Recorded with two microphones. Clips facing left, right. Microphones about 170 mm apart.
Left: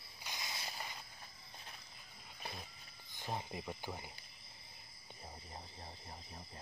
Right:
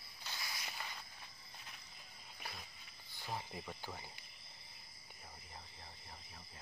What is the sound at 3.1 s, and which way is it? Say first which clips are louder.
Speech: left 3 dB; 20° left (ahead or behind).